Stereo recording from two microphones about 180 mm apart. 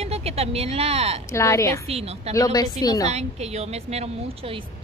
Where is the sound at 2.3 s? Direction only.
20° left (ahead or behind).